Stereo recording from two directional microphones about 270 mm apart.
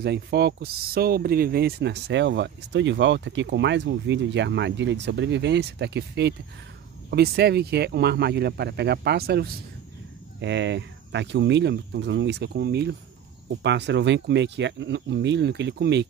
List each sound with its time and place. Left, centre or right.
0.0 s speech: right